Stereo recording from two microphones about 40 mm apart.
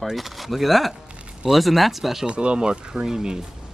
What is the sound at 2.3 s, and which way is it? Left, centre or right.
Speech, right.